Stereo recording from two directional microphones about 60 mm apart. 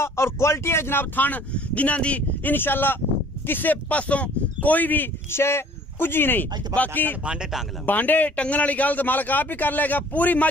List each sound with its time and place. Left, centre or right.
0.0 s speech: left
2.5 s speech: left
5.3 s speech: left
7.2 s speech: centre
7.8 s speech: left